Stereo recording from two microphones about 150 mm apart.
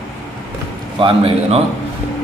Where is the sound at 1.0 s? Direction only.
40° right (ahead or behind).